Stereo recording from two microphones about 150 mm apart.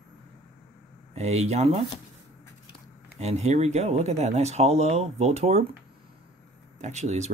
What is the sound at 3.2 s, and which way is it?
Speech, 50° right (ahead or behind).